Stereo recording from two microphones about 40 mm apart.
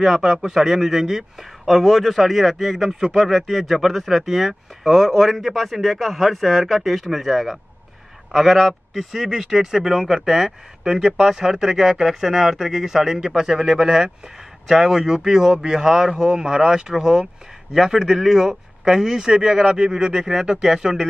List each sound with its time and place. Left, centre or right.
0.0 s speech: centre